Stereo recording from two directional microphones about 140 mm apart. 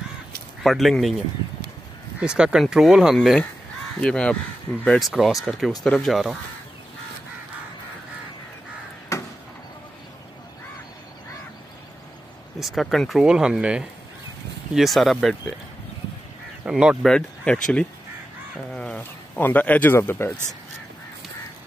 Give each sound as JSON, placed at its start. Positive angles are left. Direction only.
{"t": 0.7, "sound": "speech", "side_deg": 0}
{"t": 2.1, "sound": "speech", "side_deg": -5}
{"t": 9.1, "sound": "a sound", "side_deg": 20}
{"t": 12.5, "sound": "speech", "side_deg": 0}
{"t": 16.6, "sound": "speech", "side_deg": -5}